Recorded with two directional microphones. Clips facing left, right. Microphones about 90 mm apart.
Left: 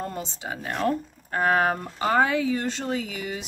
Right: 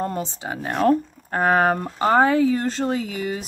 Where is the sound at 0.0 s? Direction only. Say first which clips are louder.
Right 6 dB; 45° right (ahead or behind).